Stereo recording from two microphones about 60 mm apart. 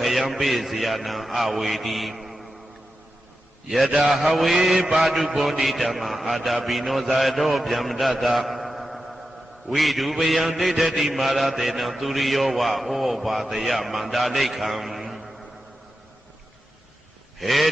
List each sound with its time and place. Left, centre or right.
0.0 s mantra: centre
3.6 s mantra: centre
17.4 s quack: centre